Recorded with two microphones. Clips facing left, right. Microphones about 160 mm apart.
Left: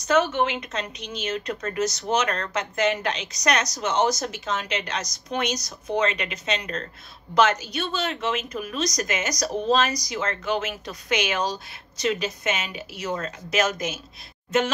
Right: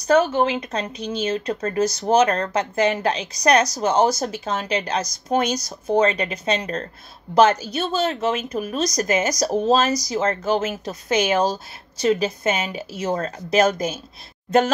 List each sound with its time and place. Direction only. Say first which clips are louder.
0.0 s speech: right 4 dB; 35° right (ahead or behind)